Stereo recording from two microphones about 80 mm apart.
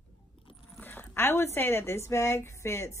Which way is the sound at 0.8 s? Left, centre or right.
Left.